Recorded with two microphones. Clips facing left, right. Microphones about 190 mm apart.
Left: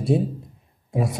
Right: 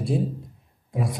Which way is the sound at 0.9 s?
25° left (ahead or behind).